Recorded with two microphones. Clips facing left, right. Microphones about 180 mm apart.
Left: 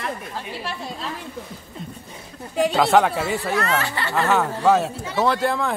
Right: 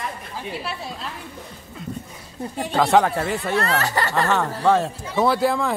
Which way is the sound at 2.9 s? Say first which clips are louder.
Even; centre (ahead or behind).